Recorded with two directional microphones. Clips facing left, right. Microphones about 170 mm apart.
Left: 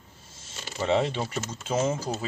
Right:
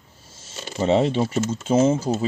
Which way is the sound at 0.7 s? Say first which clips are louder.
Right 6 dB; 30° right (ahead or behind).